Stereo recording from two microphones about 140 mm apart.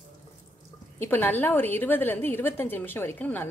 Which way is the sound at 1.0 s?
15° left (ahead or behind).